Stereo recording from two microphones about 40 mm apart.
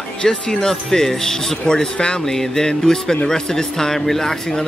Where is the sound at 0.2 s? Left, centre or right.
Centre.